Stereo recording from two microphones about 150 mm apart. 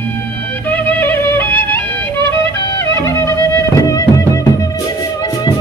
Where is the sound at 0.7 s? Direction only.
10° left (ahead or behind).